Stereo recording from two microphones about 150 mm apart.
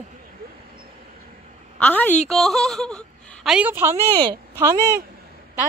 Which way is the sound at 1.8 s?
10° left (ahead or behind).